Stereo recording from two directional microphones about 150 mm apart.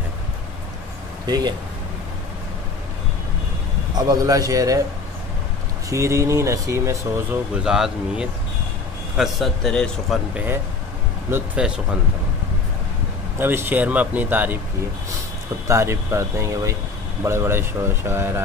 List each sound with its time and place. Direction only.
1.2 s speech: 25° right (ahead or behind)
4.1 s speech: 25° right (ahead or behind)
5.9 s speech: 20° right (ahead or behind)
7.5 s a man's voice: 5° right (ahead or behind)
13.4 s speech: 15° right (ahead or behind)
15.7 s speech: 15° right (ahead or behind)